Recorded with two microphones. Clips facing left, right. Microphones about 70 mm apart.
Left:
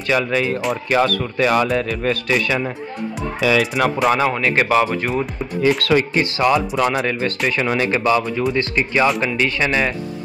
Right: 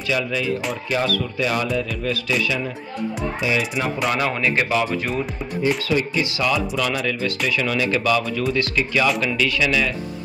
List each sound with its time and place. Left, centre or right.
0.0 s speech: left
3.3 s speech: left
4.1 s speech: left
4.5 s speech: left
5.7 s speech: left
6.3 s speech: left